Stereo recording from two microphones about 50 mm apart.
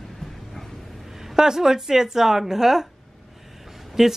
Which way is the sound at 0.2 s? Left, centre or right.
Centre.